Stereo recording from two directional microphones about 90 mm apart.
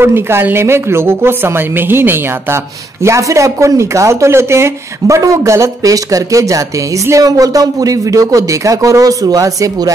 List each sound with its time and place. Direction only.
0.0 s a woman's voice: 25° right (ahead or behind)